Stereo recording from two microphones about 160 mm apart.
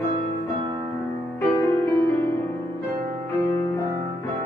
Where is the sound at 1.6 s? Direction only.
15° left (ahead or behind).